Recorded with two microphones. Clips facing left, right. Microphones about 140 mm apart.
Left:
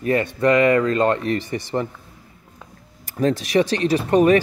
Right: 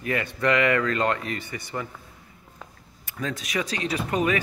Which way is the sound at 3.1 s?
35° left (ahead or behind).